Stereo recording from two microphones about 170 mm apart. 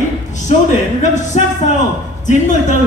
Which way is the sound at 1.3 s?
40° left (ahead or behind).